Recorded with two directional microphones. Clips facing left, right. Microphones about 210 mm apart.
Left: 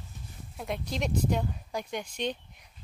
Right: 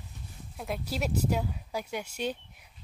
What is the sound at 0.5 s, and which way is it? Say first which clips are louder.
A woman's voice: even; centre (ahead or behind).